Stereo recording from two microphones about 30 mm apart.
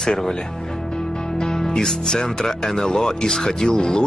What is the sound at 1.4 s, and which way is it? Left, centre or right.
Music, left.